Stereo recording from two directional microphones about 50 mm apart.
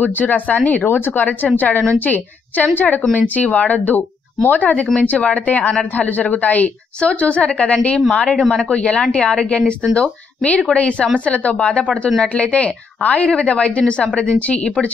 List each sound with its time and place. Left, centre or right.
0.0 s speech: left
0.8 s a woman's voice: left; by 6.0 s centre
6.0 s a woman's voice: left; by 8.7 s centre
8.7 s a woman's voice: left